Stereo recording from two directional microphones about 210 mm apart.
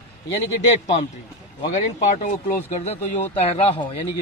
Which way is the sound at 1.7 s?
35° left (ahead or behind).